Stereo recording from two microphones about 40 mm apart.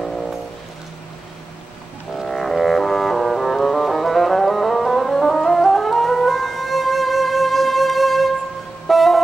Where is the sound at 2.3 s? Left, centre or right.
Centre.